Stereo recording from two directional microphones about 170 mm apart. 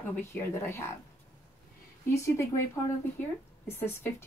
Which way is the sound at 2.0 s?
15° left (ahead or behind).